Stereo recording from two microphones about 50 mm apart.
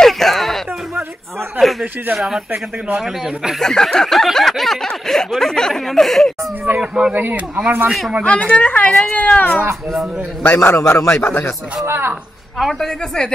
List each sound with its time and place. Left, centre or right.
0.0 s music: centre
1.6 s a sound: centre
2.1 s speech: centre
3.5 s a sound: centre
6.8 s speech: centre
7.2 s speech: right
8.2 s a woman's voice: left
10.4 s a man's voice: left
11.1 s speech: left
11.8 s speech: right
12.7 s a sound: centre